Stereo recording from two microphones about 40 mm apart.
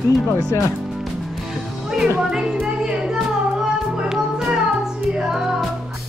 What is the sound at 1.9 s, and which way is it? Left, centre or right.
Speech, centre.